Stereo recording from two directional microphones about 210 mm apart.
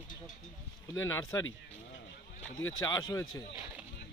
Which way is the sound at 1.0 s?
15° left (ahead or behind).